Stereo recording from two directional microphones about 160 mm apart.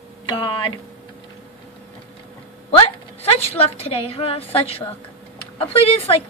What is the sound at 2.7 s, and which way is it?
A woman's voice, 40° left (ahead or behind).